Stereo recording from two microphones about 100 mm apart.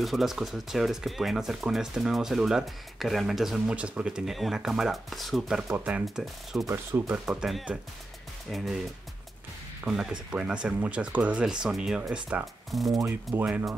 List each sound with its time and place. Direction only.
0.0 s speech: centre (ahead or behind)
5.7 s speech: 15° right (ahead or behind)
6.0 s speech: centre (ahead or behind)
6.6 s speech: 30° right (ahead or behind)
7.1 s speech: 5° right (ahead or behind)
9.8 s speech: 5° right (ahead or behind)
13.0 s speech: 25° right (ahead or behind)